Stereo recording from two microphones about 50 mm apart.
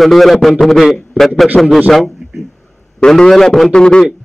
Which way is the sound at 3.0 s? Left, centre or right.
Centre.